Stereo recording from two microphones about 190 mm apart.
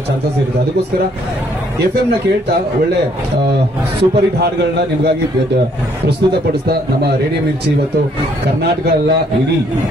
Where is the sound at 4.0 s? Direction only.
60° right (ahead or behind).